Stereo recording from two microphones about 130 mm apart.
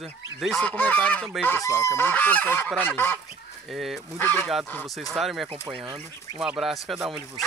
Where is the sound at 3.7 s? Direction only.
Centre (ahead or behind).